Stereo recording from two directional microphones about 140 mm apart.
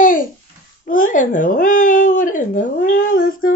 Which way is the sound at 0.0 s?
75° left (ahead or behind).